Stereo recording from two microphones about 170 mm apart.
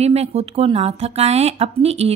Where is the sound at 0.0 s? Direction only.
40° right (ahead or behind).